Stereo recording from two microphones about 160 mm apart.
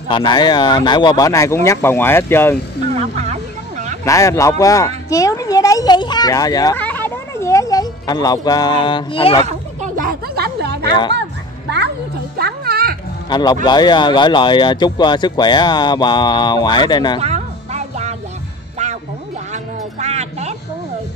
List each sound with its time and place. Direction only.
0.1 s speech: 25° left (ahead or behind)
2.9 s a sound: 45° right (ahead or behind)
4.0 s speech: 20° left (ahead or behind)
6.8 s speech: 10° left (ahead or behind); by 9.4 s 35° left (ahead or behind)
9.5 s a sound: 55° right (ahead or behind); by 10.9 s 90° right
10.9 s speech: 30° left (ahead or behind)
12.4 s music: 80° right
13.3 s speech: 25° left (ahead or behind)
17.2 s music: 45° right (ahead or behind)
19.5 s music: 45° right (ahead or behind)